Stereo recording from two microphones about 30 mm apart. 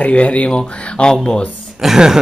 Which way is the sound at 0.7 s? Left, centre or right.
Left.